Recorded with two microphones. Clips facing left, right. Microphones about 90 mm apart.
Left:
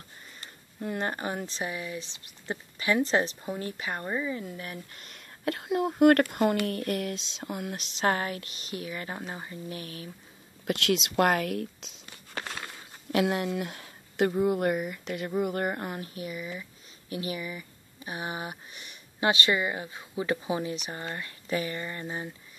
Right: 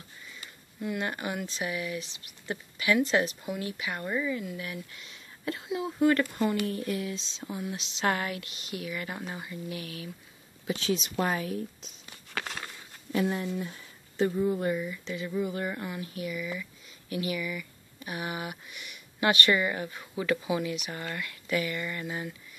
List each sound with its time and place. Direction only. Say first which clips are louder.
0.2 s speech: right 1 dB; 40° left (ahead or behind)
10.7 s speech: left 3 dB; 75° left (ahead or behind)
13.1 s a woman's voice: left 3 dB; 75° left (ahead or behind); by 22.3 s 30° left (ahead or behind)